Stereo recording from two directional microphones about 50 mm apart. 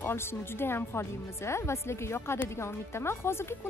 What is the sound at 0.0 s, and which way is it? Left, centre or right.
Speech, left.